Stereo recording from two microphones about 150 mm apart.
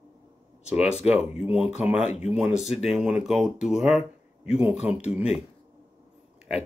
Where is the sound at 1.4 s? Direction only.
5° right (ahead or behind).